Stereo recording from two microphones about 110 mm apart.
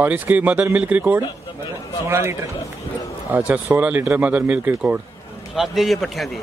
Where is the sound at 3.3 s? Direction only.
10° right (ahead or behind).